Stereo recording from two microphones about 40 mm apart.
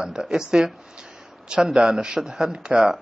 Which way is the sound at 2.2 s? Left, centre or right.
Centre.